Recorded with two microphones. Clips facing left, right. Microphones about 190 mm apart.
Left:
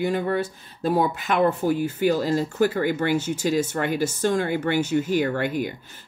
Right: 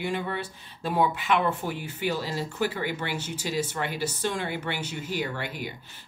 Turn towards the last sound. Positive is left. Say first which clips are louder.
# left 9 dB
turn(degrees=50)  # may be behind; listen again after turning